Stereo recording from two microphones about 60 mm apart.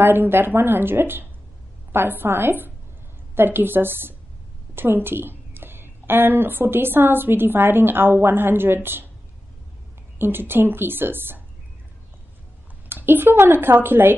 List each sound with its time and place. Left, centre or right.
0.0 s a woman's voice: right
10.1 s a woman's voice: right
12.8 s a woman's voice: right